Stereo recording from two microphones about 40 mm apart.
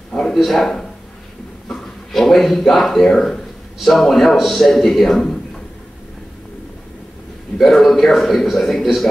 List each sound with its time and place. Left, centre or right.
0.3 s speech: centre
1.7 s a sound: centre
2.7 s a man's voice: centre
7.5 s a man's voice: centre